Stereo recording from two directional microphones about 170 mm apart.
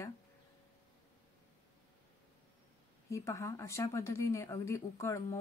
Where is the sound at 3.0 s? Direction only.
15° left (ahead or behind).